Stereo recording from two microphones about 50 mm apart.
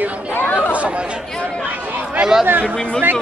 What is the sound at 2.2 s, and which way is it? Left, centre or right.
Speech, centre.